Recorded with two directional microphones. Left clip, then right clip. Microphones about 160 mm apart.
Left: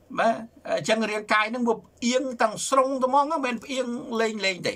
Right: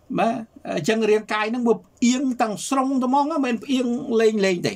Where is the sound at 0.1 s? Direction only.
25° right (ahead or behind).